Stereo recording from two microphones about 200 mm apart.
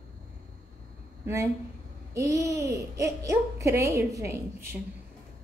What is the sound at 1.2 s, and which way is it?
A child's voice, 15° right (ahead or behind).